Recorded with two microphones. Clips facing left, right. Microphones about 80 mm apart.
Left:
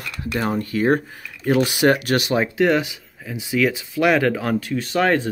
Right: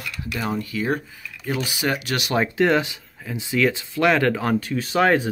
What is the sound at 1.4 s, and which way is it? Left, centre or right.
Speech, left.